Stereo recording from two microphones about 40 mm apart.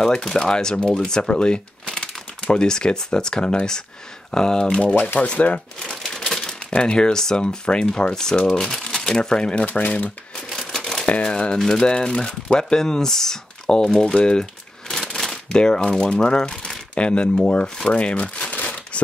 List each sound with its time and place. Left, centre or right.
0.0 s speech: centre; by 5.6 s left
6.0 s crumpling: centre
6.7 s speech: left
9.7 s speech: left
10.7 s shuffling cards: centre
11.1 s speech: left
15.5 s speech: left
17.8 s crumpling: left